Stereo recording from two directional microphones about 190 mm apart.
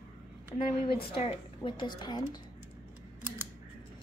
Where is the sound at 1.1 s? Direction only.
25° left (ahead or behind).